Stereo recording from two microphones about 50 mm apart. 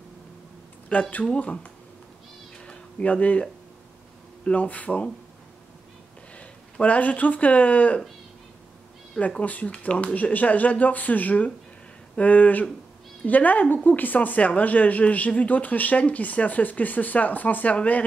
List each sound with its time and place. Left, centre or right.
1.2 s speech: left
2.6 s a sound: left
4.5 s speech: left
6.3 s speech: left
9.2 s speech: left